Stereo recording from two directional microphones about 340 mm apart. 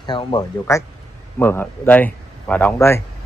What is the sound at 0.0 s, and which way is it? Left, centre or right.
Speech, centre.